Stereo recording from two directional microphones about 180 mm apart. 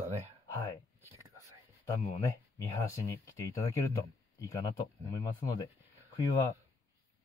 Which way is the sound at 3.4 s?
20° left (ahead or behind).